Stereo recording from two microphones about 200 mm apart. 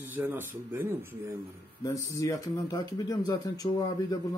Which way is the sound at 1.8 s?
15° left (ahead or behind).